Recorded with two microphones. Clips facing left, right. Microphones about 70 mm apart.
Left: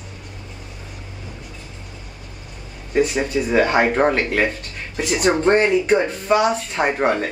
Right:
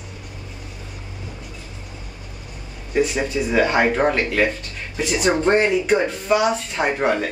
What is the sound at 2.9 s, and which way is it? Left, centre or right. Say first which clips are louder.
Speech: left 2 dB; centre.